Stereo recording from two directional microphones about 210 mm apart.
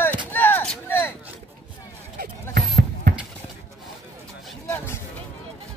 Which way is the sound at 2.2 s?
45° right (ahead or behind).